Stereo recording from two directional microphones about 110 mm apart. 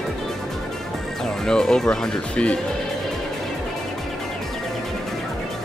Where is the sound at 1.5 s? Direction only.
5° left (ahead or behind).